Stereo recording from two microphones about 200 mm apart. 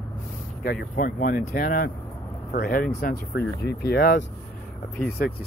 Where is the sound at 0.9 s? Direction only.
45° left (ahead or behind).